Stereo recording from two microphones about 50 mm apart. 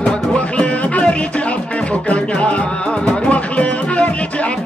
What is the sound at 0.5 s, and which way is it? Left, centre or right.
Music, left.